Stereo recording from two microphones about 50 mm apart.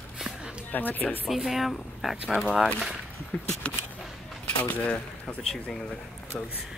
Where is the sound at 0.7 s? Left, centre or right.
Left.